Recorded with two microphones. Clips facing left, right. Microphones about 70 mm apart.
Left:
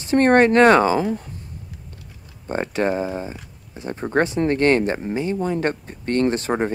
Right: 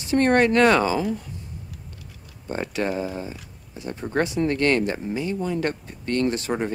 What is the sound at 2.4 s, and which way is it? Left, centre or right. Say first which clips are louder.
Speech: left 4 dB; left.